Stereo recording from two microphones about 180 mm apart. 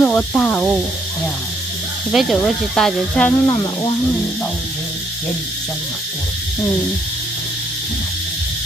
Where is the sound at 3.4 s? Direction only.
20° left (ahead or behind).